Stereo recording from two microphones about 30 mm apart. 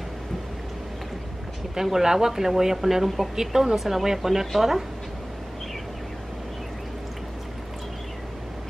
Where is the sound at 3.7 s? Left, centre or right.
Centre.